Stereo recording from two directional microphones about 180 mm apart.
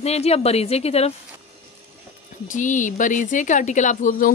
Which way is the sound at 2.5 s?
45° left (ahead or behind).